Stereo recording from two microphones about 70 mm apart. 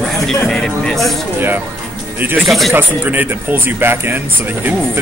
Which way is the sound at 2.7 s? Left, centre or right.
Right.